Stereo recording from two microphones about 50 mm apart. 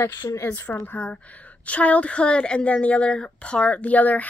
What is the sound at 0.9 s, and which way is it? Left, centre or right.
A woman's voice, left.